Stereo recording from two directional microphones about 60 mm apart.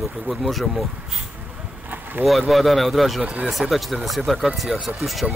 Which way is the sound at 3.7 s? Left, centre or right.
Centre.